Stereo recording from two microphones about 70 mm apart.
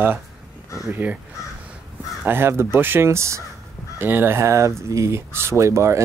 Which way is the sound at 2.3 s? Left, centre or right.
Right.